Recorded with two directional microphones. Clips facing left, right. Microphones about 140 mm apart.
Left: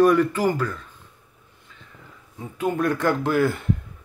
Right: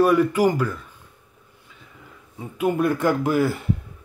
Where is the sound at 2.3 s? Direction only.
10° right (ahead or behind).